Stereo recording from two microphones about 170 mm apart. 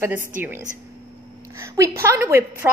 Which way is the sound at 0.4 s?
15° right (ahead or behind).